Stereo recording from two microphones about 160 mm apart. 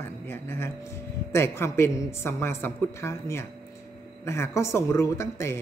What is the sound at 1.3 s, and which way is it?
A man's voice, 15° left (ahead or behind).